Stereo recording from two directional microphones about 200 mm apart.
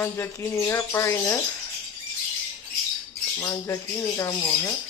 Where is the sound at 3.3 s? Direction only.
10° left (ahead or behind).